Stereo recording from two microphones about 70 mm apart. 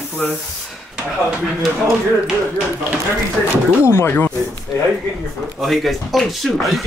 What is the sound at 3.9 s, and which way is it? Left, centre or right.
Speech, left.